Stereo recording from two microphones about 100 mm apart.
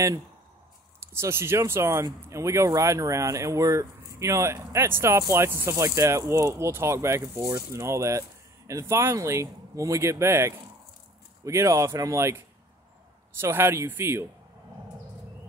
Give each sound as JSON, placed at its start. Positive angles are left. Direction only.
{"t": 1.0, "sound": "speech", "side_deg": -25}
{"t": 13.4, "sound": "speech", "side_deg": -25}